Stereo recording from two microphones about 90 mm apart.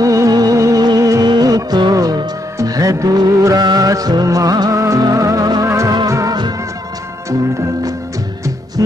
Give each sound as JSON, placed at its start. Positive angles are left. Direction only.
{"t": 0.0, "sound": "music", "side_deg": -40}